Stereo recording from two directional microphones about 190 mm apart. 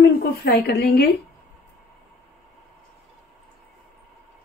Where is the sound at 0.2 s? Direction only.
60° left (ahead or behind).